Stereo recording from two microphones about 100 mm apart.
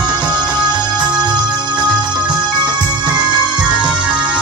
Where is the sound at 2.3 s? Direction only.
45° right (ahead or behind).